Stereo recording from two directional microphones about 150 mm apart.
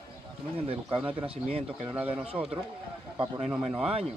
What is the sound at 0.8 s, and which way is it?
A man's voice, 10° right (ahead or behind).